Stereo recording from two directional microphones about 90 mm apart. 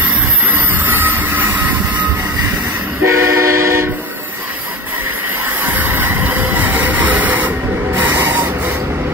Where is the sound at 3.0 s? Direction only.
30° right (ahead or behind).